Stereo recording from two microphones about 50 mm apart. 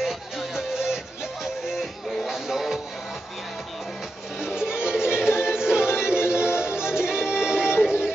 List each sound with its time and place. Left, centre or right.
0.0 s music: centre
4.4 s music: centre
6.7 s music: left
7.0 s music: centre